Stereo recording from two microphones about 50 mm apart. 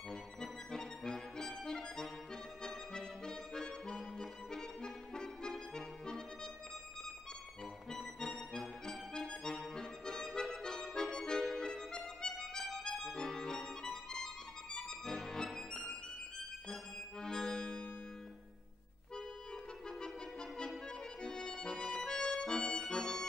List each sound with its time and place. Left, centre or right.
0.1 s accordion: centre
8.0 s accordion: centre
12.8 s music: centre
17.2 s accordion: centre
20.0 s music: centre
21.2 s accordion: centre